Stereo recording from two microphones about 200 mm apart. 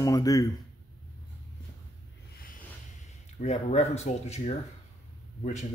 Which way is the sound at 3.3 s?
35° left (ahead or behind).